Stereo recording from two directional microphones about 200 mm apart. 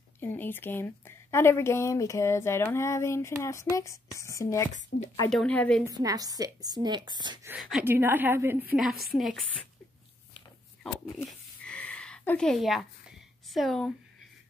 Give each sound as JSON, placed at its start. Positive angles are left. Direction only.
{"t": 0.2, "sound": "speech", "side_deg": 10}
{"t": 4.9, "sound": "speech", "side_deg": 60}
{"t": 5.3, "sound": "a woman's voice", "side_deg": 5}
{"t": 5.9, "sound": "a woman's voice", "side_deg": -20}
{"t": 7.4, "sound": "a woman's voice", "side_deg": -10}
{"t": 10.3, "sound": "a sound", "side_deg": 5}
{"t": 13.5, "sound": "a woman's voice", "side_deg": 0}